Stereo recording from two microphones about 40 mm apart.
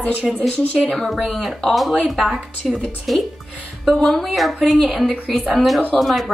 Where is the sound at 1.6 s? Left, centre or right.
Centre.